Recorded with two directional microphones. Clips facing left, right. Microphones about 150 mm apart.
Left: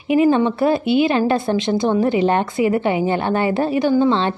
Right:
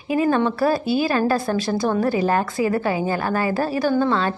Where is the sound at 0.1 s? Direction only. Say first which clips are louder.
Left 4 dB; 20° left (ahead or behind).